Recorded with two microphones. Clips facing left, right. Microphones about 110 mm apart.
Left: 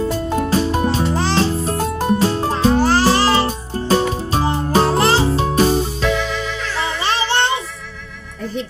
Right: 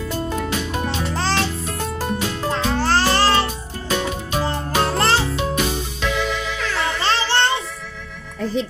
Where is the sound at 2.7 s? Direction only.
15° left (ahead or behind).